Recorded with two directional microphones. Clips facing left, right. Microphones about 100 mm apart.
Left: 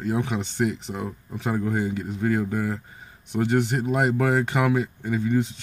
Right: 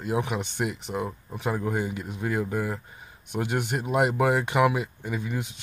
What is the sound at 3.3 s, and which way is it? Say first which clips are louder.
Speech: left 5 dB; 15° right (ahead or behind).